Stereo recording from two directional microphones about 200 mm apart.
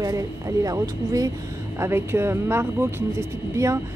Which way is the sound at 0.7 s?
15° right (ahead or behind).